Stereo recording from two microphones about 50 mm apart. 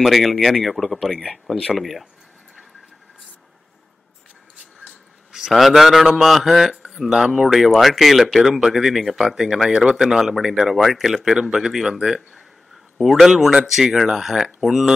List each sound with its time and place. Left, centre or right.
0.0 s a man's voice: centre
5.3 s a man's voice: centre